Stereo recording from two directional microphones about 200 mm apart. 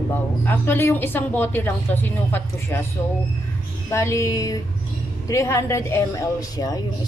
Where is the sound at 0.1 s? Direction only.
10° left (ahead or behind).